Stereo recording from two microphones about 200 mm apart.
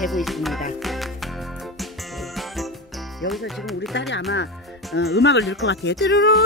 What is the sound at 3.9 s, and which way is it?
Speech, 60° left (ahead or behind).